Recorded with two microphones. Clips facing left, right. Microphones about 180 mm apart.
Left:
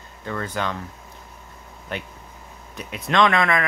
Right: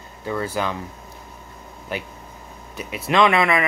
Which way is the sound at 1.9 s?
5° right (ahead or behind).